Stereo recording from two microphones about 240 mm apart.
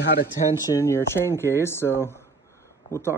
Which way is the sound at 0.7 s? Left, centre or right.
Centre.